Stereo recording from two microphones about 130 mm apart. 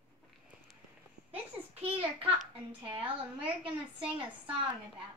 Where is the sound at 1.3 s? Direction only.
45° right (ahead or behind).